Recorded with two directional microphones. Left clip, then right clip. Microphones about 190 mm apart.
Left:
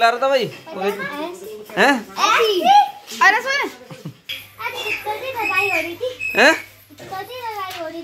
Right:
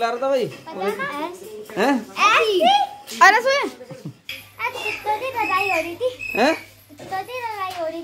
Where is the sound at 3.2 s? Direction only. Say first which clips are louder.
Right 1 dB; 85° right.